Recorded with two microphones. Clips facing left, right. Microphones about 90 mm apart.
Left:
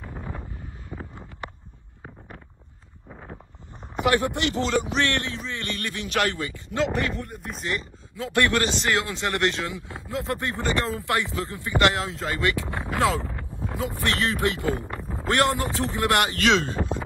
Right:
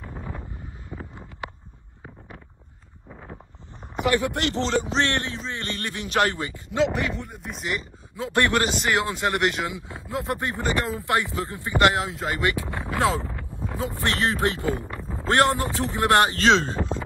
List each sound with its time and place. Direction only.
0.9 s wind noise: 10° left (ahead or behind)
4.3 s speech: 45° right (ahead or behind)
4.6 s speech: 25° right (ahead or behind)
6.7 s speech: centre (ahead or behind)
8.2 s speech: 20° right (ahead or behind)